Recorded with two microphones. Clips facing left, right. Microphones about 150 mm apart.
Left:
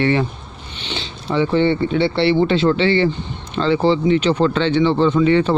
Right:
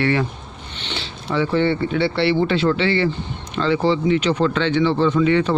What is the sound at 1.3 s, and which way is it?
Speech, 20° left (ahead or behind).